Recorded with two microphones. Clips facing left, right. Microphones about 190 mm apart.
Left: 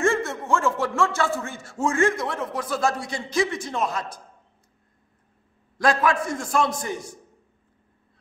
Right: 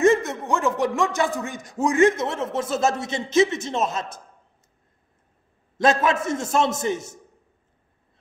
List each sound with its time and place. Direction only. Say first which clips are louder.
0.0 s a man's voice: right 5 dB; 20° right (ahead or behind)
5.8 s a man's voice: right 2 dB; 20° right (ahead or behind)